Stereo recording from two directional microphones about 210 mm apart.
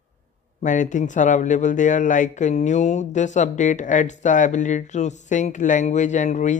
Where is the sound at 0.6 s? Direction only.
35° left (ahead or behind).